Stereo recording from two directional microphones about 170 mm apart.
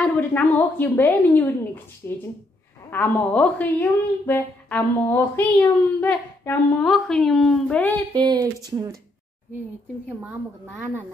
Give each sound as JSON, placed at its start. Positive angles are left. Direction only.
{"t": 0.0, "sound": "a woman's voice", "side_deg": 10}
{"t": 6.8, "sound": "a woman's voice", "side_deg": 0}
{"t": 8.1, "sound": "speech", "side_deg": -25}